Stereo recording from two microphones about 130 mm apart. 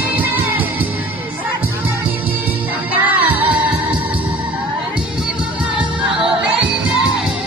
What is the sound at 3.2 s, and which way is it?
Music, 15° right (ahead or behind).